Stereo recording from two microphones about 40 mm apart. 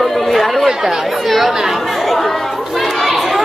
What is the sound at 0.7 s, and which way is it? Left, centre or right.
Speech, centre.